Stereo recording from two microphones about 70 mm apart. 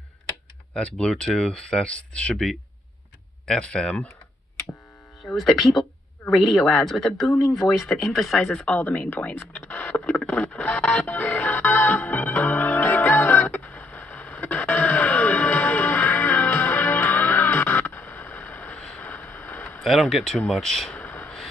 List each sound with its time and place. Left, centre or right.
0.7 s speech: centre
3.4 s speech: centre
5.2 s speech: centre
8.6 s speech: left
9.7 s music: left
19.8 s speech: centre
20.9 s a sound: left